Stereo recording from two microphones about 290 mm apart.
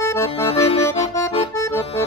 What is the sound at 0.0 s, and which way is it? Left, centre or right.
Accordion, centre.